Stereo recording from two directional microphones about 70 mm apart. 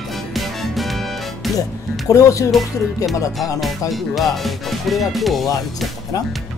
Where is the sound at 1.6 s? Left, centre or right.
Left.